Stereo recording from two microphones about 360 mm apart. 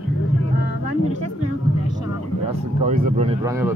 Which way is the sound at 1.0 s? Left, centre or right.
Centre.